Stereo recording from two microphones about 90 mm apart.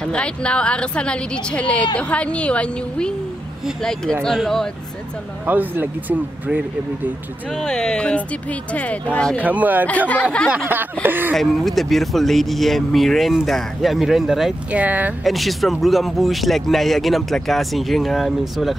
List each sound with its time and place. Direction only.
0.0 s a woman's voice: 10° left (ahead or behind)
5.5 s speech: 20° right (ahead or behind)
7.5 s a woman's voice: 10° left (ahead or behind)
9.4 s speech: 15° right (ahead or behind)
9.8 s a woman's voice: 15° left (ahead or behind)
10.7 s speech: 20° right (ahead or behind)
11.3 s speech: centre (ahead or behind)
14.7 s speech: 15° right (ahead or behind)
15.2 s speech: centre (ahead or behind)